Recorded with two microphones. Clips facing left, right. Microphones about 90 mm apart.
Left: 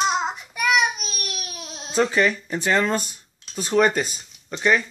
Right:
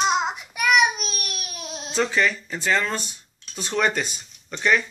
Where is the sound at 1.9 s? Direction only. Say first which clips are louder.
Left 3 dB; 10° left (ahead or behind).